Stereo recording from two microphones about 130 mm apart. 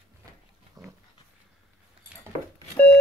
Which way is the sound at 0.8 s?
30° right (ahead or behind).